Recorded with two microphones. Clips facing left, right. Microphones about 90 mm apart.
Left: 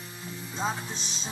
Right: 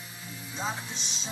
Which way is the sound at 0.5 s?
35° left (ahead or behind).